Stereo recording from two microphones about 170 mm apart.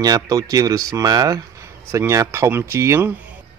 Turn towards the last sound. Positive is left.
turn(degrees=-15)  # may be behind; listen again after turning